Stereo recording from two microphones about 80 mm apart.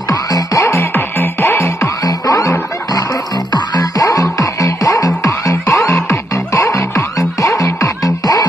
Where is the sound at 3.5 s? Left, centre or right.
Left.